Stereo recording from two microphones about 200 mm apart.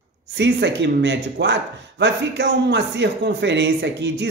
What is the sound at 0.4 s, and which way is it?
Speech, 65° right (ahead or behind).